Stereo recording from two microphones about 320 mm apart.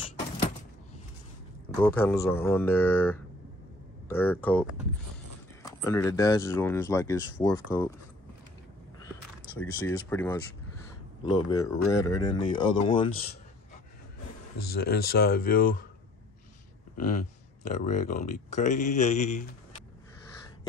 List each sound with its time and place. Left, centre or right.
1.8 s speech: centre
9.6 s speech: centre
14.7 s speech: left
16.9 s speech: left